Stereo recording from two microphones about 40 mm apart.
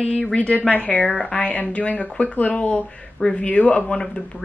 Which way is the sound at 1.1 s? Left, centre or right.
Left.